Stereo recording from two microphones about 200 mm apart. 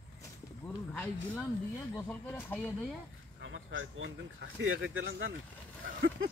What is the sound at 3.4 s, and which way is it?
Speech, 70° right (ahead or behind).